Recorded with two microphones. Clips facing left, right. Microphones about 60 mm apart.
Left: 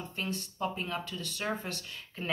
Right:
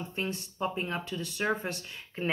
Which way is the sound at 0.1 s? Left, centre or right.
Right.